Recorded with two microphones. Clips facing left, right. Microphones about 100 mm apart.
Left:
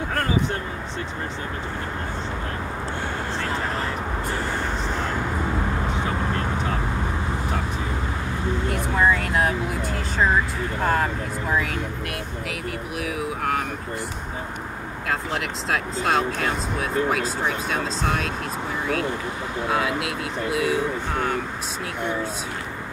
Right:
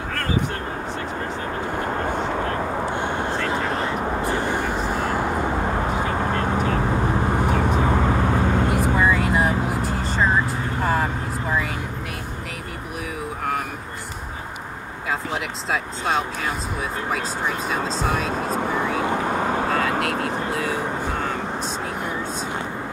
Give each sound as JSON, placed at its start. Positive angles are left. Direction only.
{"t": 4.3, "sound": "vehicle", "side_deg": -15}
{"t": 7.8, "sound": "vehicle", "side_deg": -65}
{"t": 9.0, "sound": "vehicle", "side_deg": -5}
{"t": 15.7, "sound": "speech", "side_deg": 0}
{"t": 17.6, "sound": "speech", "side_deg": 0}
{"t": 19.3, "sound": "vehicle", "side_deg": -55}
{"t": 20.1, "sound": "speech", "side_deg": 10}